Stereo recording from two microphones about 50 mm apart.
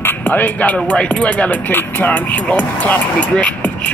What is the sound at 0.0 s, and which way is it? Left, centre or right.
Music, left.